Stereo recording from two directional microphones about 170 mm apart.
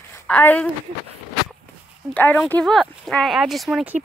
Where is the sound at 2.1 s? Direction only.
10° left (ahead or behind).